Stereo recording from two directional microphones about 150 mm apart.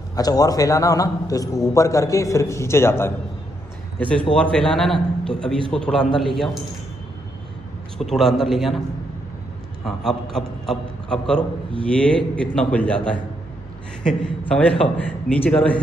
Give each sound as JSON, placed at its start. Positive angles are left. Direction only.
{"t": 0.1, "sound": "a man's voice", "side_deg": 25}
{"t": 8.0, "sound": "a man's voice", "side_deg": 0}
{"t": 9.8, "sound": "a man's voice", "side_deg": 5}
{"t": 14.5, "sound": "a man's voice", "side_deg": 5}